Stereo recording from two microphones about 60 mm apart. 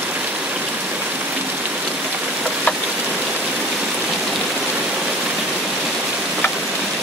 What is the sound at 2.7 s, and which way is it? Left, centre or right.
Rain, left.